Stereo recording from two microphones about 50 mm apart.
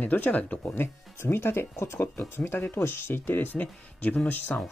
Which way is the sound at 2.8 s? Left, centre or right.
Left.